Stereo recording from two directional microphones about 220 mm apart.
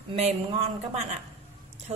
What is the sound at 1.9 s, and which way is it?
Speech, 25° right (ahead or behind).